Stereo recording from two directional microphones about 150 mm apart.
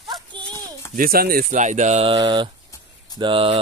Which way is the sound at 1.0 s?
80° right.